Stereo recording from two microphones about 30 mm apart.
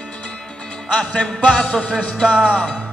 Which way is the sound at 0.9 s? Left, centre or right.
Left.